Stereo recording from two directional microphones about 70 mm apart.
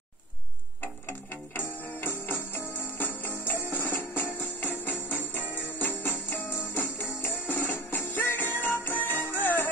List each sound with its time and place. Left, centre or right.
2.0 s music: left